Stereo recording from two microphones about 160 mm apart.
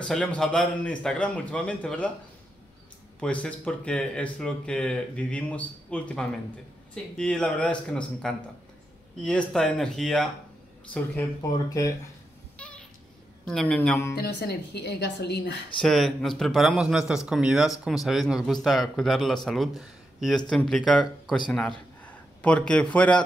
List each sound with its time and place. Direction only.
0.0 s a man's voice: 5° left (ahead or behind)
3.2 s speech: 5° left (ahead or behind)
11.5 s speech: 20° left (ahead or behind)
12.5 s a sound: 5° left (ahead or behind)
13.5 s speech: 5° left (ahead or behind)
14.1 s speech: 90° left
15.8 s a man's voice: centre (ahead or behind)